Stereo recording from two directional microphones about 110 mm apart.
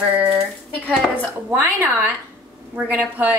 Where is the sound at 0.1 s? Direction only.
15° right (ahead or behind).